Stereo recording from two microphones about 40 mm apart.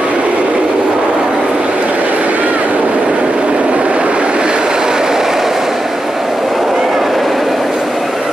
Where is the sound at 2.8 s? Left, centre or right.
Centre.